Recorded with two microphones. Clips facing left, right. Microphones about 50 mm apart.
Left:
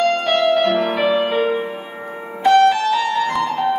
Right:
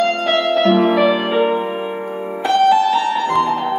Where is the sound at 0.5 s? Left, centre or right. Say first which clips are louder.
Right 3 dB; centre.